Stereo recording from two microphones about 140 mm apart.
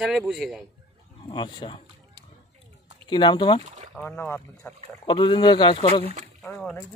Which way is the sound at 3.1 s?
35° left (ahead or behind).